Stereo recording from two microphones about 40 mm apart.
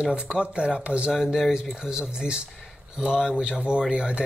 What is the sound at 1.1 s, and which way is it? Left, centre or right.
Speech, centre.